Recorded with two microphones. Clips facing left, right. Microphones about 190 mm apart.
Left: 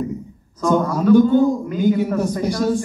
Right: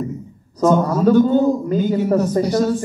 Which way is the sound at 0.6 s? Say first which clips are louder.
Right 3 dB; 40° right (ahead or behind).